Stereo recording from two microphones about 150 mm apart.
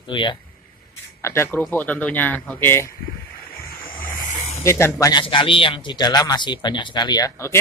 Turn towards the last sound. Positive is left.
turn(degrees=20)  # may be behind; listen again after turning